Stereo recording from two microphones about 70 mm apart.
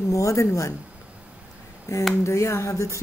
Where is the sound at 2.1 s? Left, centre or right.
Left.